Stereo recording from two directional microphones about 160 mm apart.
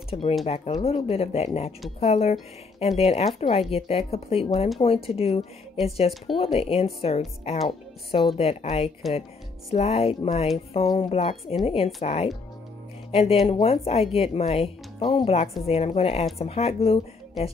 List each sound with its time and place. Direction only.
0.1 s speech: 35° left (ahead or behind)